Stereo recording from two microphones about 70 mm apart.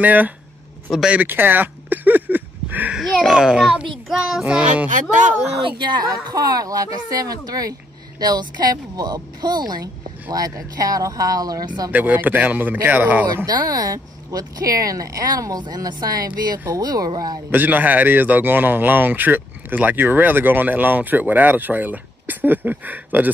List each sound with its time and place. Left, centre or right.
0.0 s a man's voice: right
1.1 s a sound: right
3.0 s a child's voice: centre
4.5 s a man's voice: centre
5.9 s speech: right
8.2 s speech: right
10.3 s speech: right
11.9 s a man's voice: right
13.5 s speech: right
17.5 s a man's voice: right